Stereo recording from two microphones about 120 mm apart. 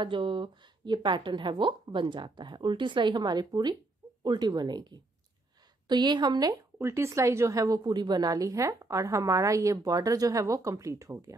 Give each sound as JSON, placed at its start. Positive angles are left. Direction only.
{"t": 0.0, "sound": "a woman's voice", "side_deg": -45}
{"t": 6.8, "sound": "a woman's voice", "side_deg": -20}